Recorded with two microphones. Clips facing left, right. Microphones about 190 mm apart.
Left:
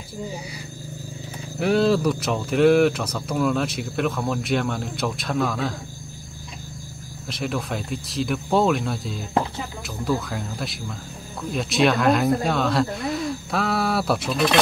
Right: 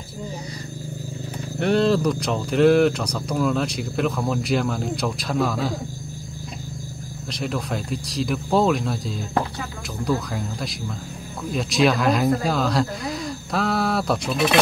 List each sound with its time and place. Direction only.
1.6 s speech: 5° left (ahead or behind)
7.2 s speech: centre (ahead or behind)